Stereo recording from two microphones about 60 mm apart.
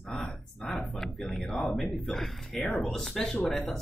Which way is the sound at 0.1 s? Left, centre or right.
Left.